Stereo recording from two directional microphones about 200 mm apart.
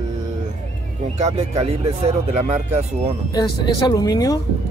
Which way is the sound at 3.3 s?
20° left (ahead or behind).